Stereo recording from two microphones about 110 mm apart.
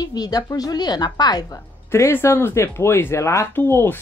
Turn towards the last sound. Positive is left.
turn(degrees=20)  # may be behind; listen again after turning